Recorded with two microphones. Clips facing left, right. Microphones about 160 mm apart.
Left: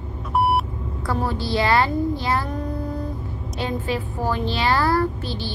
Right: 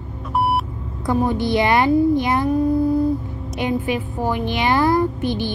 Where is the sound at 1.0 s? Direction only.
20° right (ahead or behind).